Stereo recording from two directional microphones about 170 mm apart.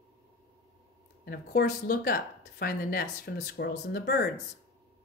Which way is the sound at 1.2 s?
65° left (ahead or behind).